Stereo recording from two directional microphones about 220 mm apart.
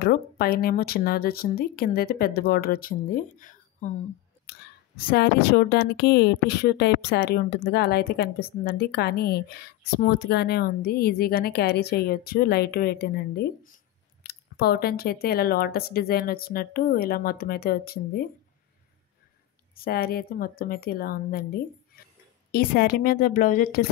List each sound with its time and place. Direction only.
0.0 s a woman's voice: 45° left (ahead or behind)
19.7 s a woman's voice: 45° left (ahead or behind)
21.9 s a sound: 45° left (ahead or behind)
22.5 s a woman's voice: 45° left (ahead or behind)